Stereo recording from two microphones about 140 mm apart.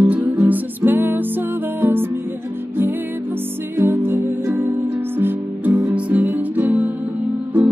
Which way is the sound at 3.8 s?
15° right (ahead or behind).